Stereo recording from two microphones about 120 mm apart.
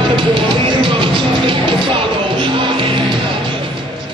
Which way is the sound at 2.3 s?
45° right (ahead or behind).